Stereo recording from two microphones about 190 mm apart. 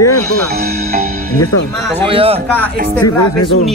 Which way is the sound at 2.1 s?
30° right (ahead or behind).